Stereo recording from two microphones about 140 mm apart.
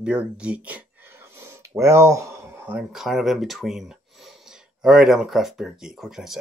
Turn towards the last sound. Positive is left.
turn(degrees=-5)  # may be behind; listen again after turning